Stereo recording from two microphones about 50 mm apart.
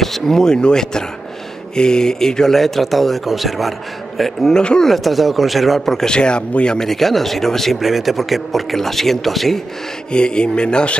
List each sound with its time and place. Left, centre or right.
0.0 s speech: centre
4.6 s speech: centre
4.9 s speech: centre
6.0 s speech: centre
6.9 s speech: centre
10.1 s speech: centre